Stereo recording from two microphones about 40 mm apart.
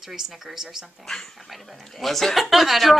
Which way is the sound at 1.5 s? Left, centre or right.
Centre.